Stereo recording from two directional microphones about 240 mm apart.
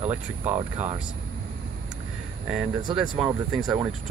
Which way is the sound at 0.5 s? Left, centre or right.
Right.